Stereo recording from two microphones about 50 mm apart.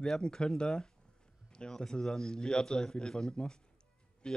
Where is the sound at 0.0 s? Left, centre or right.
Centre.